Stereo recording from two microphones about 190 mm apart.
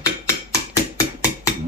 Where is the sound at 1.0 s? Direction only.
15° left (ahead or behind).